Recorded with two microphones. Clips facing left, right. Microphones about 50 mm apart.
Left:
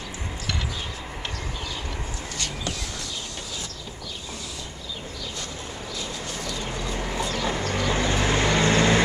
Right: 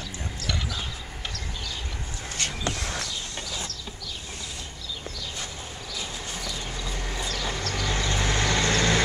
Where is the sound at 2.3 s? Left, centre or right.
Right.